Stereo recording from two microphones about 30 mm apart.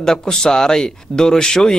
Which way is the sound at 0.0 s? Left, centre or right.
Centre.